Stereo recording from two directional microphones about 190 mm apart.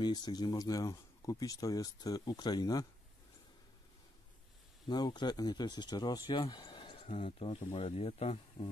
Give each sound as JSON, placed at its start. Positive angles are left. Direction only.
{"t": 0.0, "sound": "speech", "side_deg": 20}
{"t": 4.8, "sound": "speech", "side_deg": 20}